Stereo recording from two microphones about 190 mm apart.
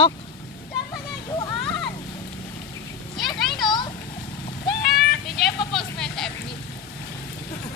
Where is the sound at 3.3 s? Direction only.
20° left (ahead or behind).